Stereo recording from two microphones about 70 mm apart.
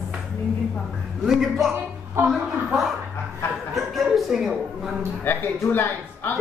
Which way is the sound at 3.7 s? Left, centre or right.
Centre.